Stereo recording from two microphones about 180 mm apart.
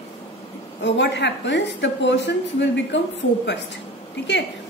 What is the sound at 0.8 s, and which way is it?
A woman's voice, 80° left.